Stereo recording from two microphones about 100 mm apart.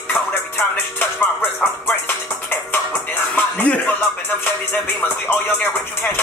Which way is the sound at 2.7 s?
20° left (ahead or behind).